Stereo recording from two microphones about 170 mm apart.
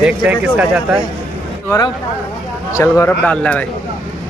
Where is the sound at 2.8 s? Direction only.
15° left (ahead or behind).